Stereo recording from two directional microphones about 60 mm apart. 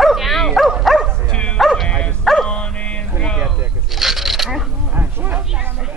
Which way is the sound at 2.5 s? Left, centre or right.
Centre.